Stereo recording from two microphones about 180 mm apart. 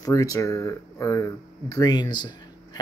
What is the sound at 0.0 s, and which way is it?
Speech, 20° left (ahead or behind).